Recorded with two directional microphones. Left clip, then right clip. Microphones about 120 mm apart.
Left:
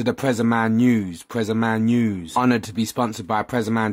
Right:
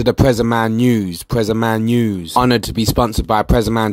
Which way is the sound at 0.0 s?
35° right (ahead or behind).